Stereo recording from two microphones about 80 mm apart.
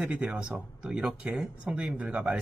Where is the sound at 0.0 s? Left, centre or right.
Centre.